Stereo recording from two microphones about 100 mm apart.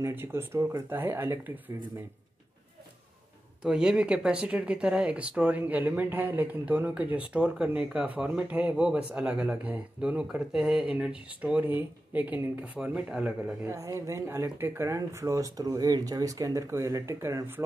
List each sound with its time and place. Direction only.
0.0 s speech: 25° right (ahead or behind)
3.6 s speech: 10° right (ahead or behind)
13.7 s speech: 30° right (ahead or behind)